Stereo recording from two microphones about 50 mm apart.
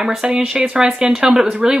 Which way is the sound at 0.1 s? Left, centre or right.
Centre.